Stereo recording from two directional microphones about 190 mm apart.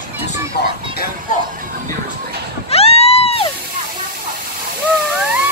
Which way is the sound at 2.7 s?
30° left (ahead or behind).